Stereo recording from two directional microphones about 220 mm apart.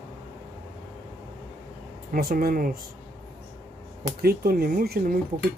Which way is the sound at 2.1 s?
40° right (ahead or behind).